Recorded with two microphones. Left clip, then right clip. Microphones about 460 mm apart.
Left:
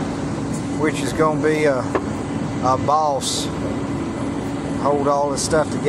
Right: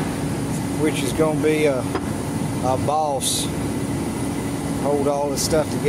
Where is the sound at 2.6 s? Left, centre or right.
Right.